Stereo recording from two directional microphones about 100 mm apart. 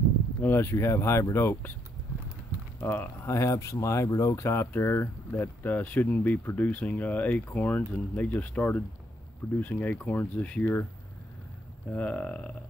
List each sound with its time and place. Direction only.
0.4 s speech: 20° left (ahead or behind)
2.8 s speech: 20° left (ahead or behind)
11.9 s speech: 15° left (ahead or behind)